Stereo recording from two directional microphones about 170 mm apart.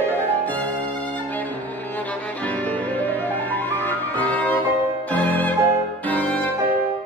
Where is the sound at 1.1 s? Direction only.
10° left (ahead or behind).